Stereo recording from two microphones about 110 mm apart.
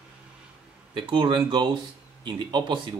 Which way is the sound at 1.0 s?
45° right (ahead or behind).